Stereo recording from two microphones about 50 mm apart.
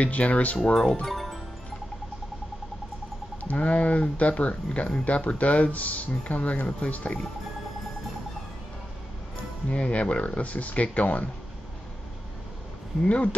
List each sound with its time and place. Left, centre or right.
0.0 s speech: left
0.7 s speech: centre
1.1 s music: centre
3.4 s speech: left
9.7 s speech: left
13.0 s speech: left